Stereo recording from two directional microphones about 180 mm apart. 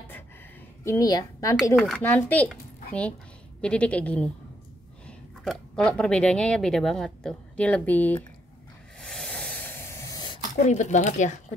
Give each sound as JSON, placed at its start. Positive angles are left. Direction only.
{"t": 0.8, "sound": "a child's voice", "side_deg": 20}
{"t": 1.8, "sound": "a child's voice", "side_deg": 5}
{"t": 9.0, "sound": "a sound", "side_deg": 5}
{"t": 10.5, "sound": "speech", "side_deg": 40}